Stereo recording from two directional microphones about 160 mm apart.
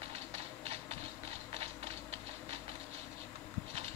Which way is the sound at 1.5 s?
40° right (ahead or behind).